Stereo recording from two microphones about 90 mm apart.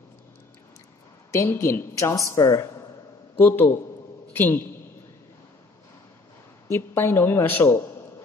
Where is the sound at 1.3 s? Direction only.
30° left (ahead or behind).